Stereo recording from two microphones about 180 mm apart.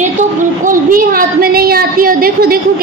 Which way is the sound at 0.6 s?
50° right (ahead or behind).